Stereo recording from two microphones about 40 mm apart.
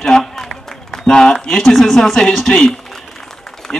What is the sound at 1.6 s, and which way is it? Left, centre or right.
Speech, centre.